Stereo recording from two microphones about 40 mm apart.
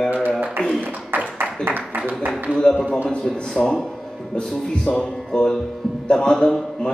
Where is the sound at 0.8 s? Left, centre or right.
Right.